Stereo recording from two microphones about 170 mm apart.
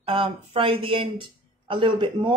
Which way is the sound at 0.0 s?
35° right (ahead or behind).